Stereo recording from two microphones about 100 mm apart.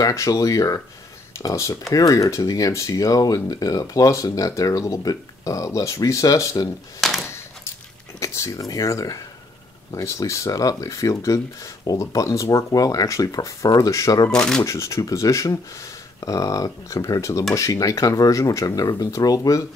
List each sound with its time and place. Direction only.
0.0 s speech: 35° left (ahead or behind)
7.0 s a sound: centre (ahead or behind)
8.2 s speech: 30° left (ahead or behind)
14.3 s speech: 10° left (ahead or behind)
14.6 s speech: 30° left (ahead or behind)